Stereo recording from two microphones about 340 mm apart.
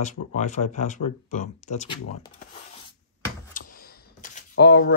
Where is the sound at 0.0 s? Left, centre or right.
Left.